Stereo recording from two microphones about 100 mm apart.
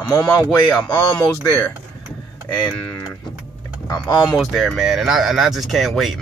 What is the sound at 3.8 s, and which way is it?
Speech, 45° left (ahead or behind).